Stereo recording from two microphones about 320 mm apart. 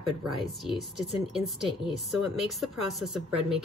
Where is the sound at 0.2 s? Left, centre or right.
Centre.